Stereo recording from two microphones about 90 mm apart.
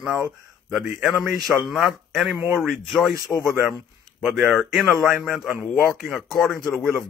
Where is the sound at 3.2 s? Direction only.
40° left (ahead or behind).